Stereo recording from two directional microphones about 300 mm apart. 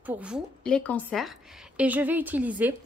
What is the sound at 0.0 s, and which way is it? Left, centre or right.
A woman's voice, centre.